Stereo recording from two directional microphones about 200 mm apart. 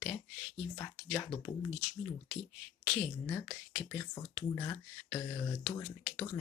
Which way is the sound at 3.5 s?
Centre (ahead or behind).